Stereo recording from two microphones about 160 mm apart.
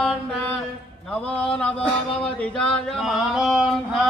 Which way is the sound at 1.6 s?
5° left (ahead or behind).